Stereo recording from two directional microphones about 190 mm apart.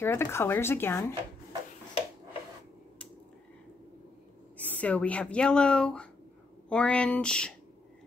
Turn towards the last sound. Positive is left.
turn(degrees=5)  # may be behind; listen again after turning